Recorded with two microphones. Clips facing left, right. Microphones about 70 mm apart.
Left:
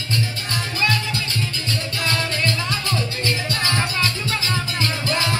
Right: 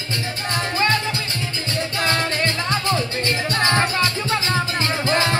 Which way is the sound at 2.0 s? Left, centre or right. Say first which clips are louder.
Right 3 dB; right.